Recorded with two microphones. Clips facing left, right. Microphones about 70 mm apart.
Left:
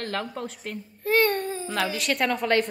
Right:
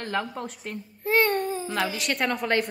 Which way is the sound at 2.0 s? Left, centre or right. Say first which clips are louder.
Left 2 dB; centre.